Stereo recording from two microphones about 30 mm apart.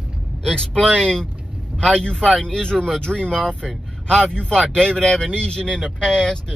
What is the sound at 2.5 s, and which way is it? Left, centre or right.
Speech, left.